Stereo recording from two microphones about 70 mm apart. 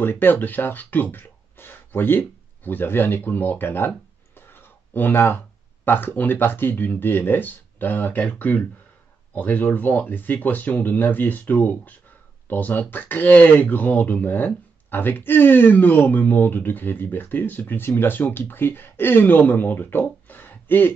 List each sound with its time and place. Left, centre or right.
0.0 s speech: left
4.4 s a sound: left
5.9 s speech: left